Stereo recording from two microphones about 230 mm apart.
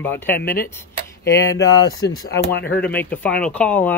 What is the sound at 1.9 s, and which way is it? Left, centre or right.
Speech, left.